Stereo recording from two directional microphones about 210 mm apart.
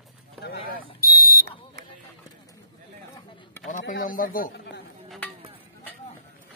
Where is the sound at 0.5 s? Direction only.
45° left (ahead or behind).